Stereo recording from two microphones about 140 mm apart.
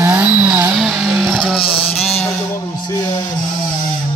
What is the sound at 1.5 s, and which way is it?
Vehicle, 40° left (ahead or behind).